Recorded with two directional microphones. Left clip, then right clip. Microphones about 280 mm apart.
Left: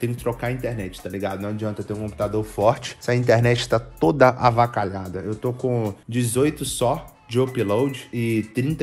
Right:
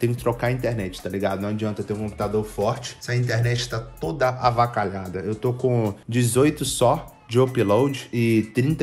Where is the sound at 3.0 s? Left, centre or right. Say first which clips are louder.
Left 9 dB; centre.